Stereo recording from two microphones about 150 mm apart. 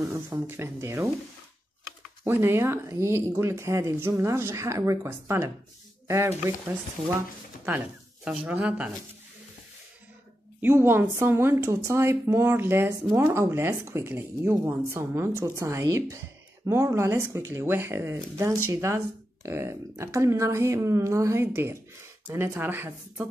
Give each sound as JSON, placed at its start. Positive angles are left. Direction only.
{"t": 0.1, "sound": "a woman's voice", "side_deg": -15}
{"t": 2.2, "sound": "a woman's voice", "side_deg": -15}
{"t": 10.6, "sound": "a woman's voice", "side_deg": -15}